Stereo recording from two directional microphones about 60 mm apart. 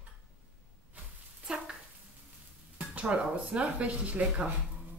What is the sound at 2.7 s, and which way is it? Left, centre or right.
Speech, right.